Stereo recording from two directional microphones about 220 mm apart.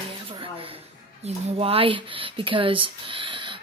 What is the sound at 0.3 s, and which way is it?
A woman's voice, 25° right (ahead or behind).